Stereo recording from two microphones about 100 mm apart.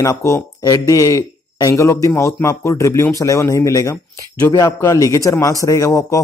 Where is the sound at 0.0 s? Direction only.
30° left (ahead or behind).